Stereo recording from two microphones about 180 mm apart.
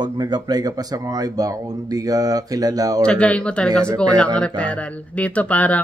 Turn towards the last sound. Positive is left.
turn(degrees=10)  # may be behind; listen again after turning